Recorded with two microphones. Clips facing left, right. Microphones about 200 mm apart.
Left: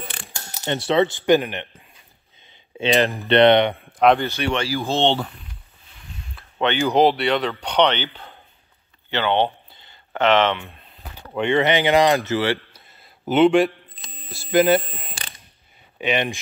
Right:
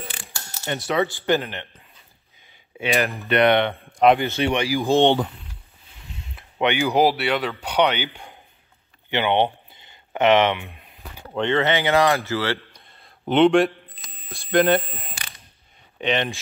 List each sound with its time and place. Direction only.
0.7 s speech: 30° left (ahead or behind)
1.2 s speech: 15° left (ahead or behind)
2.8 s speech: 20° left (ahead or behind)
4.2 s speech: 20° right (ahead or behind)
9.1 s a sound: 15° right (ahead or behind)
11.3 s speech: 15° left (ahead or behind)
12.7 s a sound: 5° left (ahead or behind)
13.3 s a man's voice: centre (ahead or behind)
16.0 s speech: 10° left (ahead or behind)